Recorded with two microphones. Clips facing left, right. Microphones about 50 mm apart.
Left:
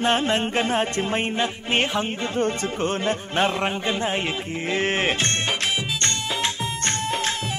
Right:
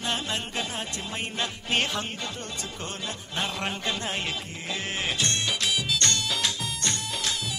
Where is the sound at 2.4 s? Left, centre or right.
Left.